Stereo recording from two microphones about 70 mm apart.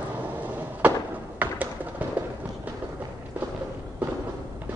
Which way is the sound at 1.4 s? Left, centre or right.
Right.